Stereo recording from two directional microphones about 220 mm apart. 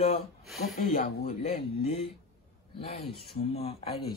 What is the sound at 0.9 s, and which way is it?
Speech, 40° left (ahead or behind).